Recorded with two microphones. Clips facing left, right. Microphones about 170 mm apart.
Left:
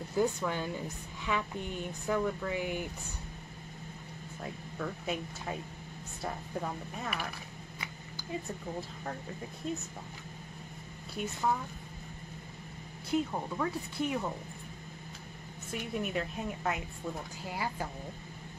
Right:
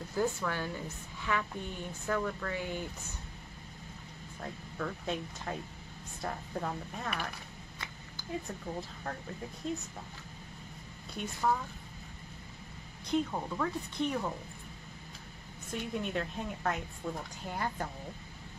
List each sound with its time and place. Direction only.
0.1 s a woman's voice: 15° left (ahead or behind)
4.4 s a woman's voice: 5° left (ahead or behind)
11.2 s speech: 5° left (ahead or behind)
13.1 s a woman's voice: 5° left (ahead or behind)
15.7 s a woman's voice: 10° left (ahead or behind)